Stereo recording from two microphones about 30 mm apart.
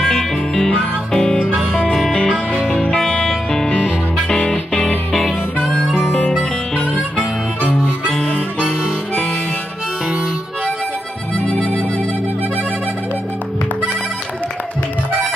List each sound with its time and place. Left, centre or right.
0.0 s music: centre
2.7 s music: left
4.3 s music: left
5.6 s music: centre
6.7 s harmonica: left
8.1 s harmonica: left
11.3 s music: left